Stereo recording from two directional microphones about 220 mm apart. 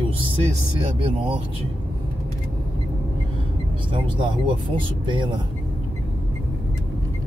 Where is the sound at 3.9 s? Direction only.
25° right (ahead or behind).